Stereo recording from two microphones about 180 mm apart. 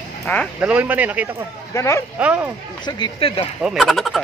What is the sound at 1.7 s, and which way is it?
Speech, 15° left (ahead or behind).